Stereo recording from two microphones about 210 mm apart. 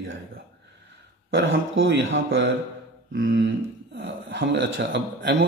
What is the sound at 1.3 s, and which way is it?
A man's voice, 65° right (ahead or behind).